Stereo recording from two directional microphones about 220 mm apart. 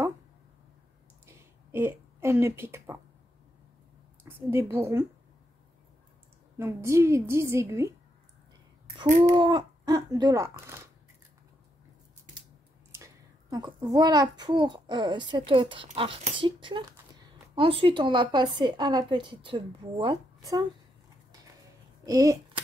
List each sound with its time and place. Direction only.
1.2 s a sound: 10° right (ahead or behind)
4.2 s a woman's voice: 10° right (ahead or behind)
6.6 s speech: 10° right (ahead or behind)
9.1 s speech: 20° right (ahead or behind)
12.9 s a child's voice: 15° right (ahead or behind)
22.0 s speech: 15° right (ahead or behind)